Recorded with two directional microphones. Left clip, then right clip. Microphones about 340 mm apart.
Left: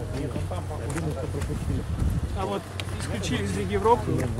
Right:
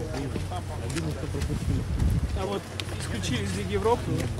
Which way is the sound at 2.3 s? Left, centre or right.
Centre.